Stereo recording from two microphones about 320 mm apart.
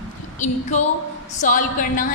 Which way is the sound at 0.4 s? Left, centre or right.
Left.